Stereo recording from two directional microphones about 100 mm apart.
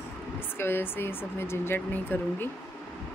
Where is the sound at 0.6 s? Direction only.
20° left (ahead or behind).